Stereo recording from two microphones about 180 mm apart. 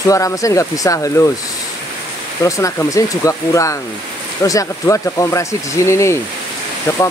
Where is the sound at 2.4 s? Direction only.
20° left (ahead or behind).